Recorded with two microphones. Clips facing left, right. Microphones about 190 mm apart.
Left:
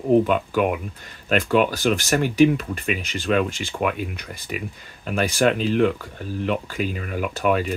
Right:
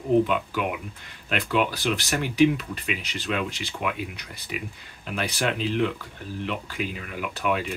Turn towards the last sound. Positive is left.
turn(degrees=45)  # may be behind; listen again after turning